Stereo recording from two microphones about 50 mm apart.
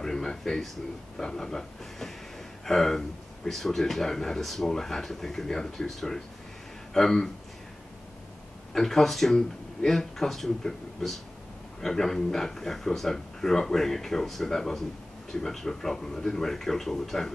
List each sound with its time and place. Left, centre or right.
0.0 s speech: centre
8.7 s speech: centre